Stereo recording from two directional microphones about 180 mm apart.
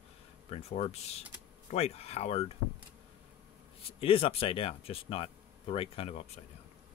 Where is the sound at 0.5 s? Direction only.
35° left (ahead or behind).